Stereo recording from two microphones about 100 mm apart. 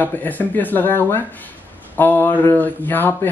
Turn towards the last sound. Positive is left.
turn(degrees=20)  # may be behind; listen again after turning